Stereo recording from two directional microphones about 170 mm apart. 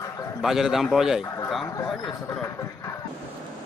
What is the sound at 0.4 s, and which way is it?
A man's voice, centre (ahead or behind).